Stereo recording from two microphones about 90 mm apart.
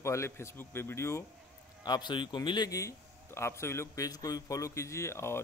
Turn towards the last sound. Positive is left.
turn(degrees=30)  # may be behind; listen again after turning